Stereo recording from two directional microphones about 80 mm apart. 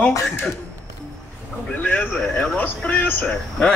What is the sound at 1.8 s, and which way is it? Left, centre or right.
Speech, centre.